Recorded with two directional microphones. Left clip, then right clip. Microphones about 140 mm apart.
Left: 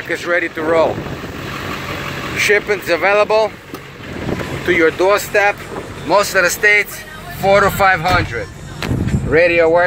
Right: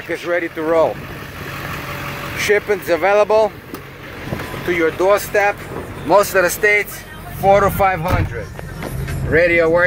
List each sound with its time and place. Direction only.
0.1 s speech: 15° right (ahead or behind)
2.3 s speech: 30° right (ahead or behind)
4.6 s speech: centre (ahead or behind)
4.9 s speech: 15° right (ahead or behind)
6.0 s speech: 50° right (ahead or behind)
6.4 s speech: 30° right (ahead or behind)
7.4 s speech: 15° right (ahead or behind)
9.3 s speech: 5° left (ahead or behind)